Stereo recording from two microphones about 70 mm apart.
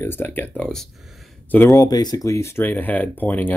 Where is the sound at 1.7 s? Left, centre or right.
Left.